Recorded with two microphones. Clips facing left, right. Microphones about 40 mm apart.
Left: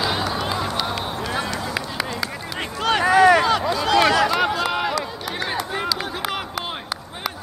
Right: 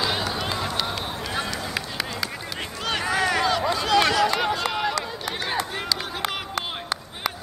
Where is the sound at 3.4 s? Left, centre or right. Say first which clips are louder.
Left 3 dB; centre.